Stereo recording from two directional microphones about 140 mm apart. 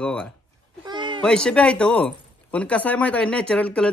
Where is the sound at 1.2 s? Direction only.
5° left (ahead or behind).